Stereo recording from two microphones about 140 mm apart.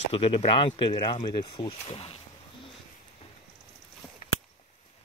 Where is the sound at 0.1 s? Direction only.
45° left (ahead or behind).